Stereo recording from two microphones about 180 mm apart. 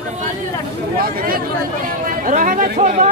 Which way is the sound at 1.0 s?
55° right (ahead or behind).